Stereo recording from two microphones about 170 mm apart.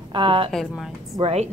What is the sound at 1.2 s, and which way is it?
Speech, 40° right (ahead or behind).